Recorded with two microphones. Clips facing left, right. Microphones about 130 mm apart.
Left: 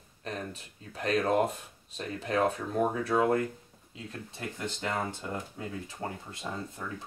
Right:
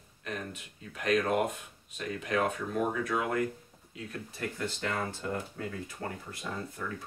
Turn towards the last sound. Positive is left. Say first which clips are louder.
# even
turn(degrees=25)  # may be behind; listen again after turning